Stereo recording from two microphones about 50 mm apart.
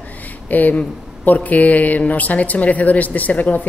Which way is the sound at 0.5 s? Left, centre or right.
Left.